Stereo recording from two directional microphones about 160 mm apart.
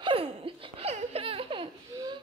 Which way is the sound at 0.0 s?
35° right (ahead or behind).